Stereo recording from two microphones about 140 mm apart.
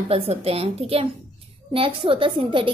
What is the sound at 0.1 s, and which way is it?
A woman's voice, 45° right (ahead or behind).